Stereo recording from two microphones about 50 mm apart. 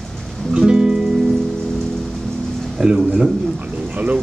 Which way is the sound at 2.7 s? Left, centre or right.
Centre.